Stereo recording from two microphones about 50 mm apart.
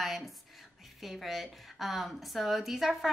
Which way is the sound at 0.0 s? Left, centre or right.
Centre.